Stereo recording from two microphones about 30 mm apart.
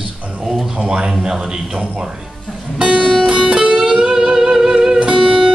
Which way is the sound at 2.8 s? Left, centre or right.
Right.